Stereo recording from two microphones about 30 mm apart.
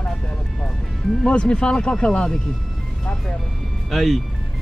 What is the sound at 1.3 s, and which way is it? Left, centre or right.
Speech, left.